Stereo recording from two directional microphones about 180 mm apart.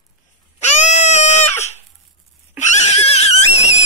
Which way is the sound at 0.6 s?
40° left (ahead or behind).